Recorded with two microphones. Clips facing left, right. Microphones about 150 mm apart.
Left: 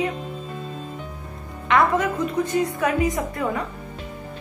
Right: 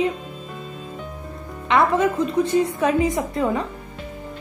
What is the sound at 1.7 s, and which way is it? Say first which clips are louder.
A woman's voice: right 1 dB; 25° right (ahead or behind).